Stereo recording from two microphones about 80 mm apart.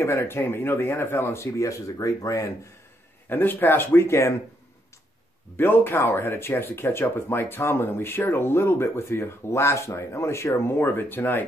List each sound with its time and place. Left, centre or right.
0.0 s speech: left
3.3 s speech: left
5.6 s speech: left